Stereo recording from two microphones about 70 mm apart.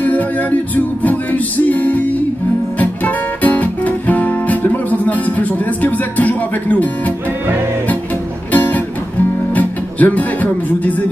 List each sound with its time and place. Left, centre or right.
0.0 s music: left
2.8 s guitar: left
8.5 s music: left